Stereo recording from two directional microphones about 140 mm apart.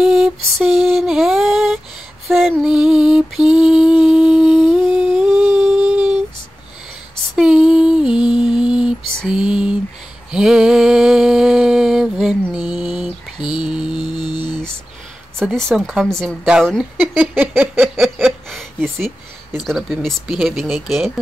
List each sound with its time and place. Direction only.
0.0 s lullaby: 5° right (ahead or behind)
2.2 s mantra: 5° right (ahead or behind)
4.9 s humming: 5° right (ahead or behind)
7.3 s female singing: 5° right (ahead or behind)
10.3 s a sound: 5° right (ahead or behind)
13.9 s music: 30° left (ahead or behind)
15.3 s speech: centre (ahead or behind)
17.4 s a sound: 10° right (ahead or behind)
17.9 s a sound: centre (ahead or behind)
19.5 s speech: centre (ahead or behind)